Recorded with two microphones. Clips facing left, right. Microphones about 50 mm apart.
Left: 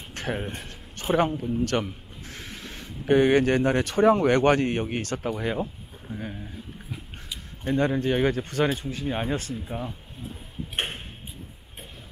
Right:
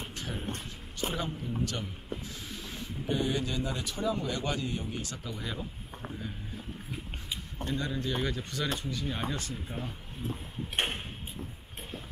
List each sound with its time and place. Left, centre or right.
0.1 s music: left
0.6 s speech: left
6.0 s speech: right
7.6 s speech: left
9.7 s speech: left